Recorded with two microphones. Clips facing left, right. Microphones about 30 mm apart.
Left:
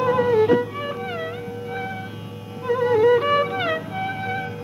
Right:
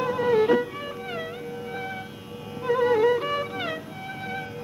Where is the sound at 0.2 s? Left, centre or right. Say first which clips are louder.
Left 1 dB; centre.